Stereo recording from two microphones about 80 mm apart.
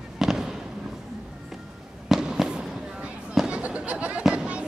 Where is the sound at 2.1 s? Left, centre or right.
Centre.